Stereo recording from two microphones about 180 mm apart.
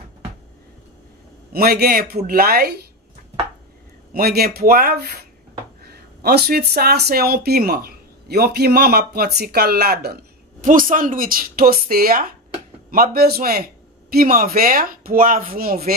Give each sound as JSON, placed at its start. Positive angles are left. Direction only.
{"t": 1.5, "sound": "speech", "side_deg": -60}
{"t": 4.1, "sound": "speech", "side_deg": -60}
{"t": 6.2, "sound": "speech", "side_deg": -60}
{"t": 10.6, "sound": "speech", "side_deg": -50}